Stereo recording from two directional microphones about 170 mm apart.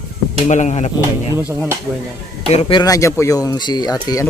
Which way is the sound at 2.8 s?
20° left (ahead or behind).